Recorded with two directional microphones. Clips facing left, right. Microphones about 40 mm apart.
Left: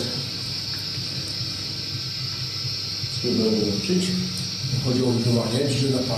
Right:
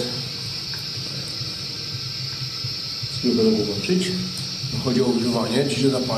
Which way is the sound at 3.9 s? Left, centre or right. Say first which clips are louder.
Right 1 dB; centre.